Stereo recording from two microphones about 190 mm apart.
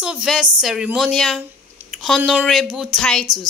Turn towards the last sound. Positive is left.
turn(degrees=0)  # may be behind; listen again after turning